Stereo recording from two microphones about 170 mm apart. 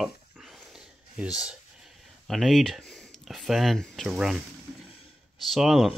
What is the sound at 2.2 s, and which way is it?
Speech, centre (ahead or behind).